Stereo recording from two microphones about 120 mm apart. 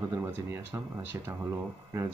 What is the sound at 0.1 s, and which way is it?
Speech, 20° right (ahead or behind).